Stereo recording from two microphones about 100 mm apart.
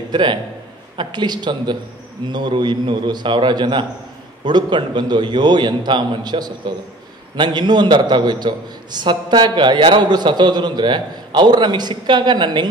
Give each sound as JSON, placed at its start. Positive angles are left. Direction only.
{"t": 0.1, "sound": "a man's voice", "side_deg": -50}